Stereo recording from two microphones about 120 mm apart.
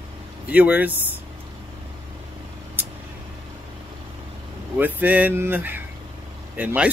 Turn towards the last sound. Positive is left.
turn(degrees=-10)  # may be behind; listen again after turning